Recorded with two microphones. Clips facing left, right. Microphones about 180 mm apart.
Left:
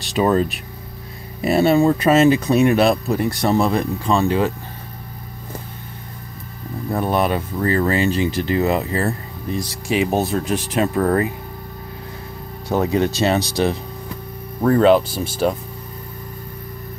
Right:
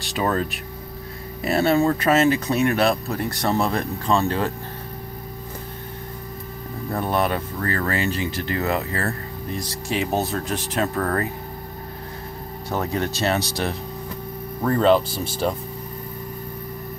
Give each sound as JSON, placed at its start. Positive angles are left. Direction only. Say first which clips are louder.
{"t": 0.1, "sound": "speech", "louder": "left 6 dB", "side_deg": 20}
{"t": 6.9, "sound": "speech", "louder": "left 3 dB", "side_deg": 15}
{"t": 12.7, "sound": "speech", "louder": "left 7 dB", "side_deg": 15}
{"t": 14.6, "sound": "speech", "louder": "left 4 dB", "side_deg": 5}